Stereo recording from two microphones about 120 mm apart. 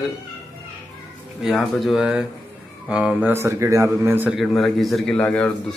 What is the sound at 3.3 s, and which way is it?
Speech, 20° right (ahead or behind).